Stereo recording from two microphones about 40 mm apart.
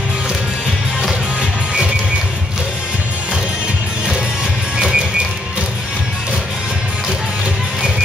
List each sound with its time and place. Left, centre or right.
4.7 s music: right